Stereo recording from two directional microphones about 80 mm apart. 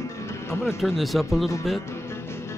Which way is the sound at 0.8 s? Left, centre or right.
Centre.